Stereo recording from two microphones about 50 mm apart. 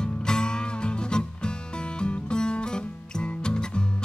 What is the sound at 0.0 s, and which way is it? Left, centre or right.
Music, centre.